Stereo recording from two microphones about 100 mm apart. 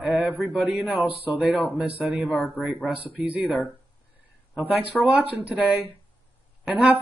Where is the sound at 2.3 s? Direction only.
Centre (ahead or behind).